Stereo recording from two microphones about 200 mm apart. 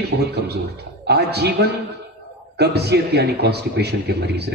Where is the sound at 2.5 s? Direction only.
55° right (ahead or behind).